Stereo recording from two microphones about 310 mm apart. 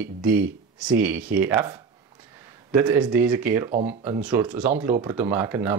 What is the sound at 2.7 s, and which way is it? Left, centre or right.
Speech, centre.